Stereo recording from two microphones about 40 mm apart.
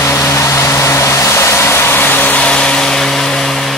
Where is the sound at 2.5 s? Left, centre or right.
Left.